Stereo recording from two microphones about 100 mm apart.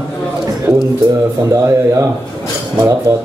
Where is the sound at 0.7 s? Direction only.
5° right (ahead or behind).